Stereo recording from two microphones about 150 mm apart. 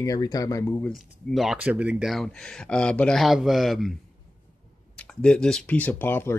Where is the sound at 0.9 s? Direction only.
Centre (ahead or behind).